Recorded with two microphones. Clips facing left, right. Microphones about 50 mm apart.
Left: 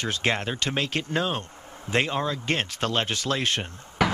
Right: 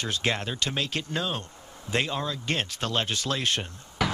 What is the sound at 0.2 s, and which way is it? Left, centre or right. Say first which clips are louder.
Speech: left 3 dB; left.